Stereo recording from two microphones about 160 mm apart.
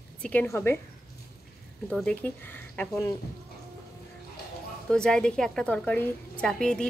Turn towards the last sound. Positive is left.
turn(degrees=5)  # may be behind; listen again after turning